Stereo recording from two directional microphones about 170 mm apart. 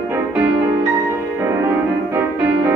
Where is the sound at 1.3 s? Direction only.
15° right (ahead or behind).